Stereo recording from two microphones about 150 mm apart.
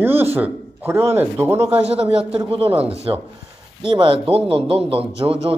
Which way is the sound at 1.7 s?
40° right (ahead or behind).